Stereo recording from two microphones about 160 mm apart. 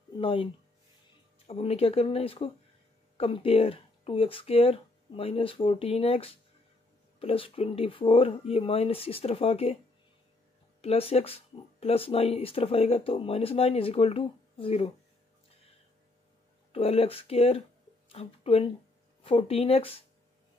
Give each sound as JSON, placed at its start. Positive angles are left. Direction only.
{"t": 0.1, "sound": "speech", "side_deg": 35}
{"t": 1.5, "sound": "speech", "side_deg": 40}
{"t": 10.8, "sound": "speech", "side_deg": 40}
{"t": 16.7, "sound": "speech", "side_deg": 35}